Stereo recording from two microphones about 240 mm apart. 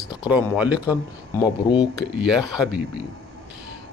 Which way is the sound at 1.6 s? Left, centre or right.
Centre.